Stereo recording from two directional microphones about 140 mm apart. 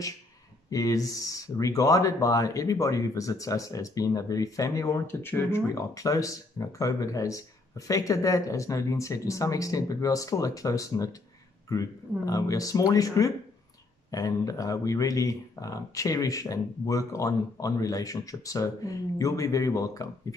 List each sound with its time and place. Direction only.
0.7 s speech: 25° left (ahead or behind)